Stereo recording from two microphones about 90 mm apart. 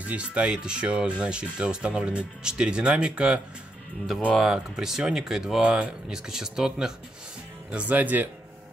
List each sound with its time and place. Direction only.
0.0 s speech: 15° right (ahead or behind)
4.4 s speech: 5° right (ahead or behind)
7.7 s speech: 15° right (ahead or behind)